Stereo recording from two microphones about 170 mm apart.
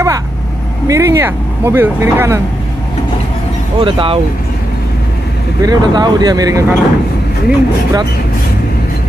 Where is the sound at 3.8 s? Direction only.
30° right (ahead or behind).